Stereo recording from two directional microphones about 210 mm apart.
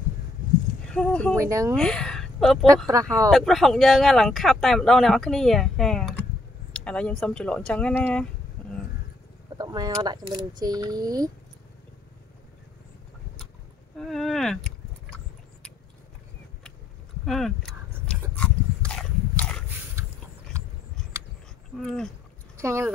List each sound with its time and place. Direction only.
0.8 s speech: 5° left (ahead or behind)
1.4 s speech: 15° right (ahead or behind)
1.8 s speech: 5° left (ahead or behind)
8.6 s vehicle: 5° left (ahead or behind)
9.6 s speech: 20° right (ahead or behind)
13.9 s a sound: centre (ahead or behind)
17.2 s a sound: centre (ahead or behind)
18.3 s pig: 5° left (ahead or behind)
21.7 s speech: centre (ahead or behind)
22.6 s speech: 10° right (ahead or behind)